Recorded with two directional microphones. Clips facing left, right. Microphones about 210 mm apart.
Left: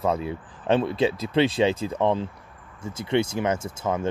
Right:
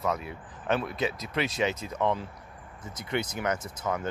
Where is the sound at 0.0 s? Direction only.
30° left (ahead or behind).